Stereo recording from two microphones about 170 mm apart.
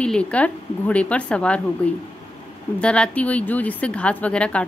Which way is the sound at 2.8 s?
5° left (ahead or behind).